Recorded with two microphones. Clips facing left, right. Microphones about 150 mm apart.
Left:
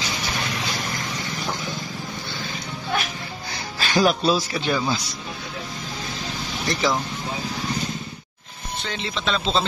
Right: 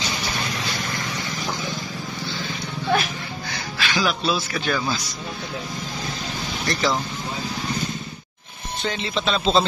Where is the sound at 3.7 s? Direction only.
40° left (ahead or behind).